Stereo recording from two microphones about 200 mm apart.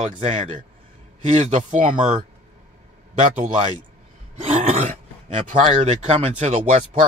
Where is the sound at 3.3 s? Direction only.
35° right (ahead or behind).